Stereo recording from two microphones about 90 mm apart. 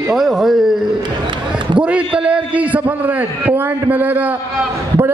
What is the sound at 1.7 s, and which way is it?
A man's voice, 15° right (ahead or behind).